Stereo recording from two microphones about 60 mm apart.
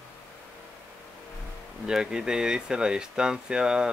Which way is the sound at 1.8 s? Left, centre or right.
Centre.